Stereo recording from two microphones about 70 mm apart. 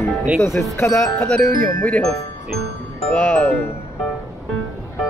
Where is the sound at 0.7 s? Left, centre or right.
Left.